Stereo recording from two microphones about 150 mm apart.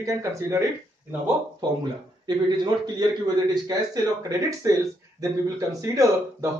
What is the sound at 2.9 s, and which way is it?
Speech, 25° right (ahead or behind).